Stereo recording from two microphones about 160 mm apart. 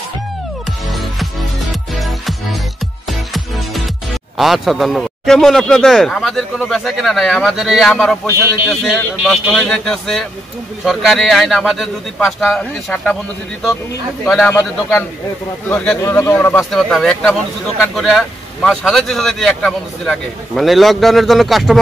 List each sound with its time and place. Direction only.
3.1 s music: centre (ahead or behind)
4.4 s speech: centre (ahead or behind)
14.2 s a man's voice: 10° left (ahead or behind)
15.7 s speech: 5° left (ahead or behind)
16.0 s a man's voice: 20° left (ahead or behind)
16.7 s speech: 5° left (ahead or behind)